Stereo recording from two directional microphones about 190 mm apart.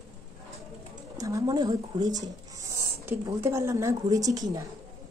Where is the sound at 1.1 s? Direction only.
15° right (ahead or behind).